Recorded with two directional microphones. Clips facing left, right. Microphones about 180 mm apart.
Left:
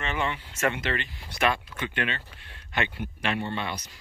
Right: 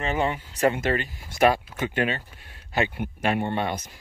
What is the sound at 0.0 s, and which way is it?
Speech, 40° right (ahead or behind).